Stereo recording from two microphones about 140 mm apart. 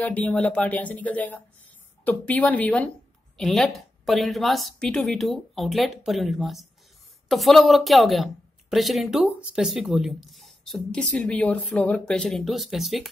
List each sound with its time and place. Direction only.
0.0 s speech: 10° left (ahead or behind)